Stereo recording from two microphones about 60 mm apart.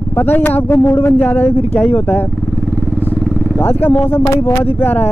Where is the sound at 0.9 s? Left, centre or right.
Left.